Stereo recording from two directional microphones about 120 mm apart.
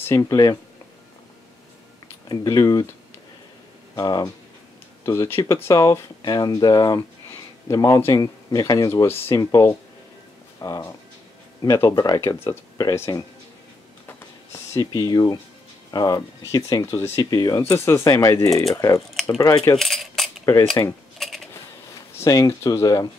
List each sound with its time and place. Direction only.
0.0 s speech: 25° left (ahead or behind)
2.2 s speech: 30° left (ahead or behind)
3.9 s speech: 35° left (ahead or behind)
9.0 s speech: 20° left (ahead or behind)
14.0 s a sound: 25° left (ahead or behind)
15.9 s speech: 35° left (ahead or behind)
17.6 s speech: 20° left (ahead or behind)
18.9 s speech: centre (ahead or behind)
19.2 s speech: 30° left (ahead or behind)
19.8 s cutlery: centre (ahead or behind)
20.8 s speech: 25° left (ahead or behind)
21.2 s a sound: centre (ahead or behind)
22.2 s speech: 30° left (ahead or behind)